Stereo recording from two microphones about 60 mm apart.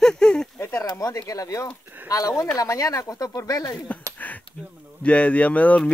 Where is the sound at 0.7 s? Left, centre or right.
Left.